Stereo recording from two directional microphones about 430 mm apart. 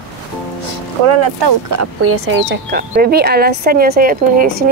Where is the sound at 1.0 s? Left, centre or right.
Right.